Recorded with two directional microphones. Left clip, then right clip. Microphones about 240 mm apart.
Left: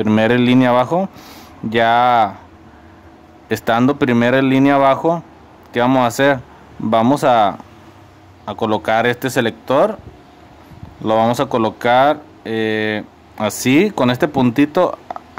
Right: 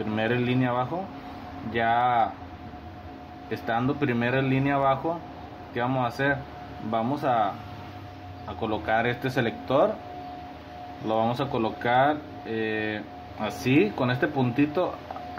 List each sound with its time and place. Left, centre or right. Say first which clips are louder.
0.0 s speech: left 12 dB; left
3.4 s speech: left 12 dB; left
11.1 s speech: left 11 dB; left